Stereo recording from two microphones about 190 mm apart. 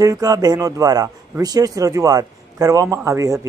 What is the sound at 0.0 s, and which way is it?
A man's voice, 20° right (ahead or behind).